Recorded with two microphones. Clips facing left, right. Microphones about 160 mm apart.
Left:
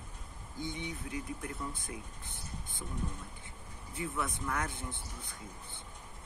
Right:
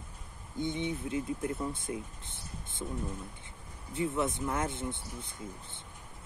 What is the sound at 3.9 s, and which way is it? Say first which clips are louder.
Speech: right 6 dB; 25° right (ahead or behind).